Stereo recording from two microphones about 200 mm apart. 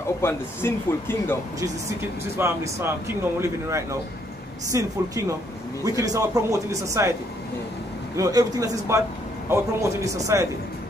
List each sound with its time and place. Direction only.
0.2 s a man's voice: 15° left (ahead or behind)
2.3 s speech: 15° right (ahead or behind)
8.2 s speech: 15° right (ahead or behind)